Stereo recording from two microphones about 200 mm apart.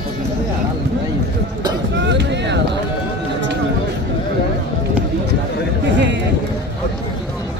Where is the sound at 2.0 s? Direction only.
60° right (ahead or behind).